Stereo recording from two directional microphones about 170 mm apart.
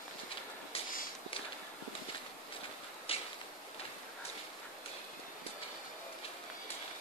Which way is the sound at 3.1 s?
35° left (ahead or behind).